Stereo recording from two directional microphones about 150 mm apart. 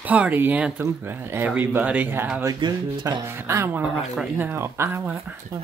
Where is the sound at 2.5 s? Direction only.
30° right (ahead or behind).